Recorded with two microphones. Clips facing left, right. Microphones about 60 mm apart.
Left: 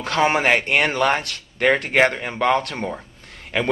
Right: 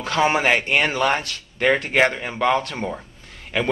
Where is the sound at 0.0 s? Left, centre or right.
Left.